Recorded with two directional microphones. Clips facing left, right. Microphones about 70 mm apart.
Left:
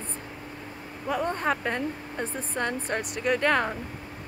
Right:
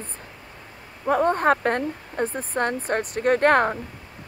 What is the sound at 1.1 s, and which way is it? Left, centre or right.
Speech, right.